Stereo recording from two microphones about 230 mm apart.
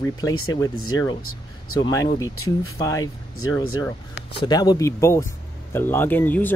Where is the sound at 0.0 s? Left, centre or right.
Centre.